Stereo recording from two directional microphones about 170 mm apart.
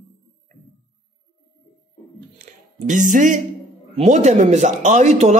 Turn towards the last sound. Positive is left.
turn(degrees=-40)  # may be behind; listen again after turning